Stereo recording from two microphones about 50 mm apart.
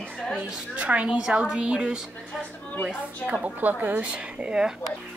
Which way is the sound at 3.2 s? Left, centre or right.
Right.